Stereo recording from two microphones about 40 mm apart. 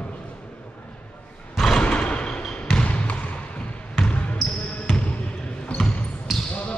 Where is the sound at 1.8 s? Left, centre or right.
Left.